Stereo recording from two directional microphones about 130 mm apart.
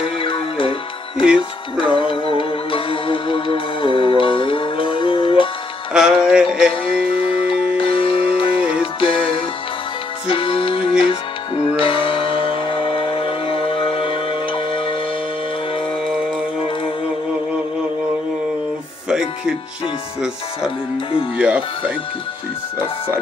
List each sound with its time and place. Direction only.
0.0 s music: 45° left (ahead or behind)
5.9 s music: 5° right (ahead or behind)
6.7 s music: 45° left (ahead or behind)
19.0 s music: 5° right (ahead or behind)
21.4 s music: 10° right (ahead or behind)